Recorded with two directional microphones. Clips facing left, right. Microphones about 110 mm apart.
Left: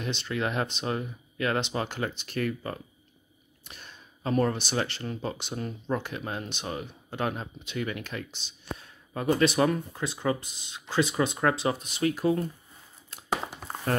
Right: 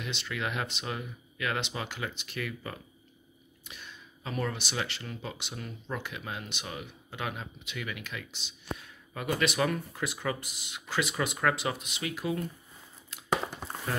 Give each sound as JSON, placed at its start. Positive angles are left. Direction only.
{"t": 0.0, "sound": "speech", "side_deg": 35}